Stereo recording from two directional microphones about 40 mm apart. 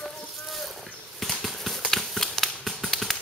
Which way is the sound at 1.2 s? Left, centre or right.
Centre.